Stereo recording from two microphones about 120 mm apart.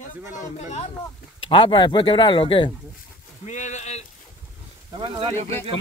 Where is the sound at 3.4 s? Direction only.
85° left.